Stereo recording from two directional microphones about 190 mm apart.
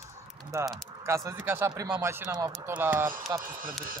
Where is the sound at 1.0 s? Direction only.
15° right (ahead or behind).